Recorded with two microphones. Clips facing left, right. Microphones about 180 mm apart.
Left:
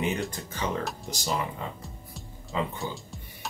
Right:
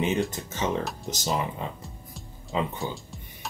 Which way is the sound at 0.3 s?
20° right (ahead or behind).